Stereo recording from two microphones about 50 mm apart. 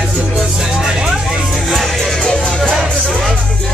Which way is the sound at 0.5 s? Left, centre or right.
Centre.